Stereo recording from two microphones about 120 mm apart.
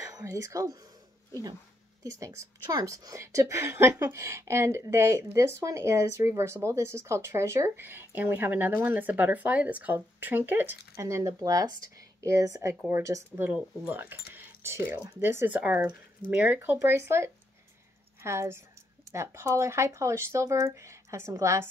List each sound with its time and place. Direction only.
0.2 s a woman's voice: 25° right (ahead or behind)
2.0 s a woman's voice: 25° right (ahead or behind)